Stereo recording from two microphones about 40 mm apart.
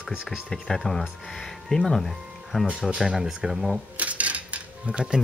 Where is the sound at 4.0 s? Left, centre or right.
Right.